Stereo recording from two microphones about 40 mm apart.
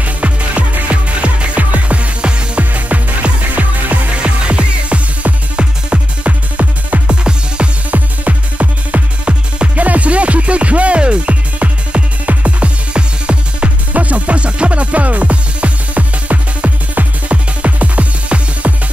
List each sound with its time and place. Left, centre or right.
0.0 s music: right
4.2 s music: right
7.1 s music: right
7.9 s music: right